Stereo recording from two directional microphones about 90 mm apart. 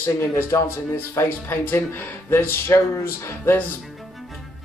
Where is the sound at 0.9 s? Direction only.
25° left (ahead or behind).